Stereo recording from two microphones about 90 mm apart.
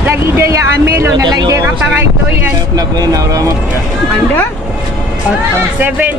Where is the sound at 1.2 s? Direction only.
45° right (ahead or behind).